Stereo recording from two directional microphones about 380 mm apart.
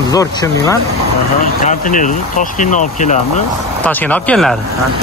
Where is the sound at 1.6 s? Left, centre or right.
Left.